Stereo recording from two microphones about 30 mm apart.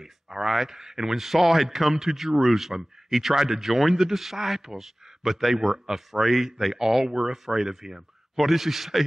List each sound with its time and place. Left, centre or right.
0.0 s speech: centre